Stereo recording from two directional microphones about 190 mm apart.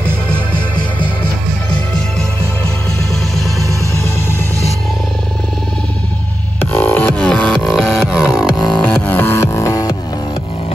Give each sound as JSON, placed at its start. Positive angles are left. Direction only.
{"t": 6.6, "sound": "music", "side_deg": 10}